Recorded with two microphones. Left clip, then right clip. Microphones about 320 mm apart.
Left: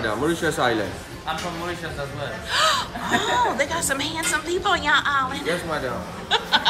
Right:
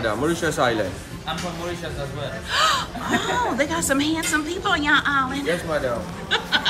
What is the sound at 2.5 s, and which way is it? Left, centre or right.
A woman's voice, centre.